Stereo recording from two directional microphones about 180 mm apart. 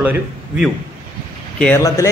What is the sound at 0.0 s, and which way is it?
Speech, 10° right (ahead or behind).